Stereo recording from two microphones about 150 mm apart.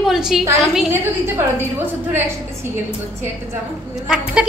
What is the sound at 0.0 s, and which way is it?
Speech, centre (ahead or behind).